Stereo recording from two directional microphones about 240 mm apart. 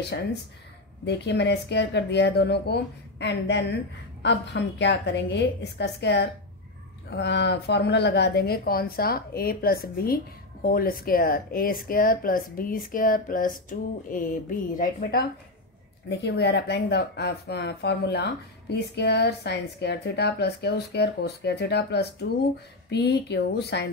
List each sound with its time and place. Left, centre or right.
1.0 s a woman's voice: left